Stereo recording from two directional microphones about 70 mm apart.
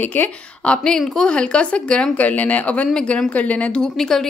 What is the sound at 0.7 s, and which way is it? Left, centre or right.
A woman's voice, centre.